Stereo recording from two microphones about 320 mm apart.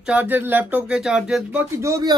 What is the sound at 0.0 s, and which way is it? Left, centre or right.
Speech, centre.